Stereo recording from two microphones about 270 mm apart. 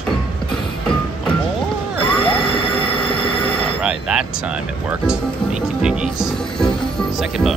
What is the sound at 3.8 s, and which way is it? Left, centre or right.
Speech, centre.